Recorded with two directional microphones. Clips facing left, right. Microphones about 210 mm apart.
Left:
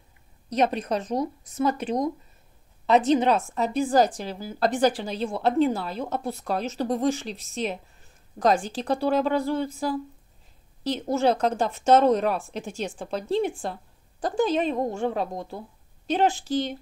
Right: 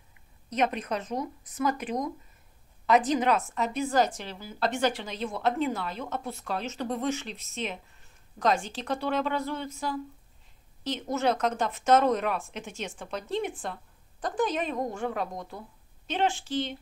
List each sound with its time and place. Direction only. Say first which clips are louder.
0.5 s a woman's voice: left 4 dB; 35° left (ahead or behind)